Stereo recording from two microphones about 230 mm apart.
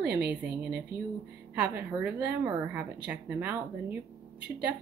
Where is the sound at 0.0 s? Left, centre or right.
Right.